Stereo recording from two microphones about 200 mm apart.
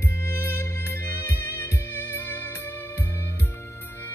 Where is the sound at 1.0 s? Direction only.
60° left (ahead or behind).